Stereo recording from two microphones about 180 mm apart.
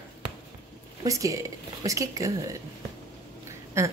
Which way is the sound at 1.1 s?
20° right (ahead or behind).